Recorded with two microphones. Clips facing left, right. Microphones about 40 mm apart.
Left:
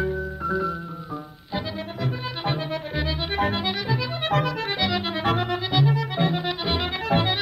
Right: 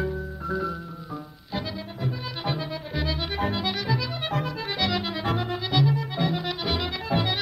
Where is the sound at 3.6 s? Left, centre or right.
Centre.